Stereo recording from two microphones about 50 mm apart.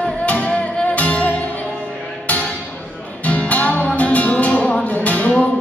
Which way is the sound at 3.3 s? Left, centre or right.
Left.